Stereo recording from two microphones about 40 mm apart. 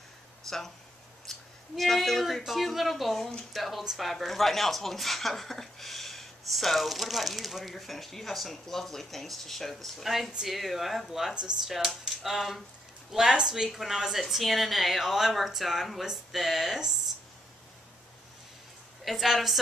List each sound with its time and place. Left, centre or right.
0.5 s speech: centre
13.3 s a woman's voice: centre
19.0 s speech: centre